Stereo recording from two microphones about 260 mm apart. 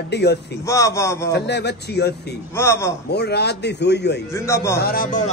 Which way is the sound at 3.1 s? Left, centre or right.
Left.